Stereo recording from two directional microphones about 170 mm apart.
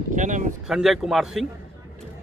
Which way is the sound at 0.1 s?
45° right (ahead or behind).